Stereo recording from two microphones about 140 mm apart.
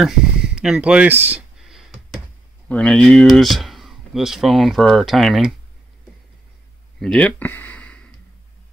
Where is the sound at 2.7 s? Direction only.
5° left (ahead or behind).